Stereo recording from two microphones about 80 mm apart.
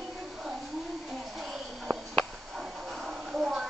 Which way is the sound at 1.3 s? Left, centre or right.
Centre.